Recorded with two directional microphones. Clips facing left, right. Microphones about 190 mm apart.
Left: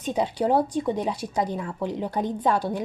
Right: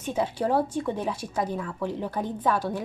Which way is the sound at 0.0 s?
15° left (ahead or behind).